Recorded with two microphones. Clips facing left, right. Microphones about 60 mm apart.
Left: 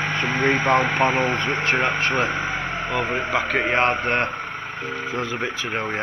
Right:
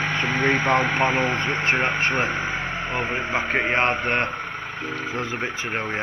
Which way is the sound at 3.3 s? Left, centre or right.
Right.